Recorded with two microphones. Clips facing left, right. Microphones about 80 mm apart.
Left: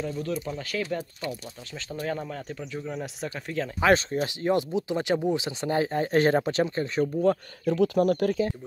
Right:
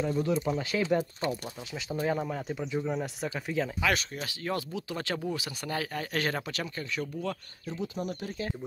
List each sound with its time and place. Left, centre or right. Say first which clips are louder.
0.0 s speech: right 2 dB; centre
3.8 s speech: left 8 dB; left
7.6 s speech: left 13 dB; left